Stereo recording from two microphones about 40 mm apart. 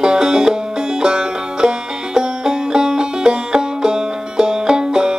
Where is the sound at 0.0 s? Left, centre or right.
Centre.